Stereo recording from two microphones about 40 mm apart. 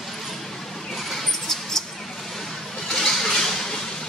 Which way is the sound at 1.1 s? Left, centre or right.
Centre.